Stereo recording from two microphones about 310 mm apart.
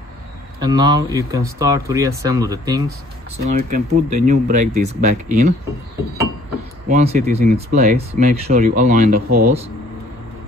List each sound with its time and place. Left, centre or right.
0.6 s speech: centre
3.5 s speech: right
6.9 s speech: right